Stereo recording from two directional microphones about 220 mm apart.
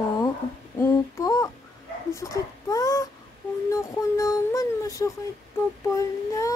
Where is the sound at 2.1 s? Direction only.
15° left (ahead or behind).